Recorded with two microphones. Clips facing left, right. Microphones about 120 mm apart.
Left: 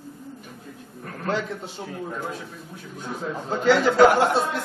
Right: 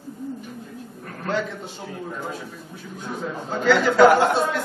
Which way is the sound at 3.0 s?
Centre (ahead or behind).